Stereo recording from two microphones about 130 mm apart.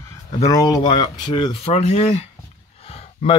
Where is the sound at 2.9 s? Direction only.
50° left (ahead or behind).